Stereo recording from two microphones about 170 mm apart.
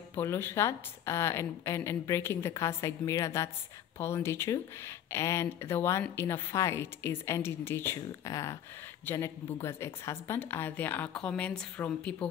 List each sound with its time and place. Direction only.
0.1 s speech: 15° left (ahead or behind)